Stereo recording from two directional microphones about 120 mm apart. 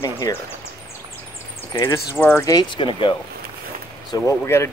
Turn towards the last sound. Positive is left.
turn(degrees=20)  # may be behind; listen again after turning